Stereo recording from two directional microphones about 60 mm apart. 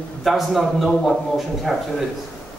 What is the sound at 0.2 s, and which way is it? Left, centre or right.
Speech, centre.